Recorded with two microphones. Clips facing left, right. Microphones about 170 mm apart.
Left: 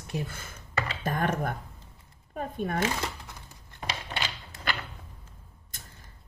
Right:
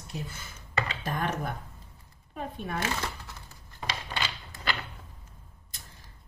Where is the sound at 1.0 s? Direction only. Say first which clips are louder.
Left 7 dB; 45° left (ahead or behind).